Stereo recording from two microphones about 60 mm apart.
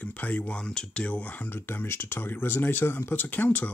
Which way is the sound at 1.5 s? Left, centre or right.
Left.